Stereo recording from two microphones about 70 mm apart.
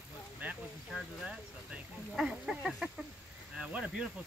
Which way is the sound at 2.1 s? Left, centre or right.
Centre.